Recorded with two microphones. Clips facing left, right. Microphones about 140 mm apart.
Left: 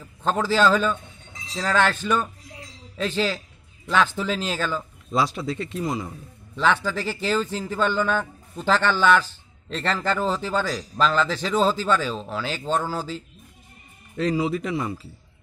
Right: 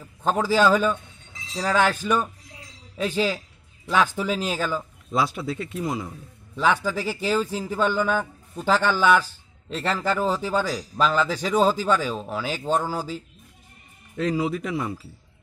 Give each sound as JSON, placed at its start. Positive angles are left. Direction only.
{"t": 0.0, "sound": "a man's voice", "side_deg": -10}
{"t": 14.3, "sound": "speech", "side_deg": 0}